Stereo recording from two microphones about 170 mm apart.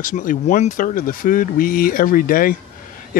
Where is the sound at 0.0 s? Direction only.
50° left (ahead or behind).